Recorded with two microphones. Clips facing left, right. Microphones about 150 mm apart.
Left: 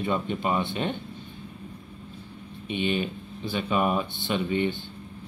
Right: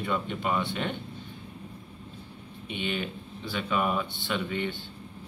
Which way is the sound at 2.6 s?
20° left (ahead or behind).